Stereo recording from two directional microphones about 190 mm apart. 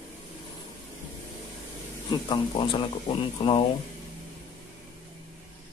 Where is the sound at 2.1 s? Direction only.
25° left (ahead or behind).